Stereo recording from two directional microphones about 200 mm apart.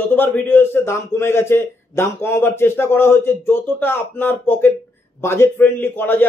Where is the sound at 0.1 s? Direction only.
10° left (ahead or behind).